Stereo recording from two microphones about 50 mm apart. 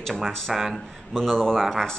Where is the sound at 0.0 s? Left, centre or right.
Centre.